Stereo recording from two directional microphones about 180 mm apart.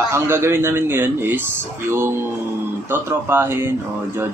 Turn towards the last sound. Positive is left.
turn(degrees=-10)  # may be behind; listen again after turning